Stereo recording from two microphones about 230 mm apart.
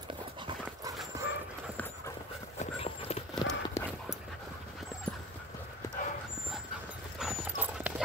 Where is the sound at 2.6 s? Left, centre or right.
Left.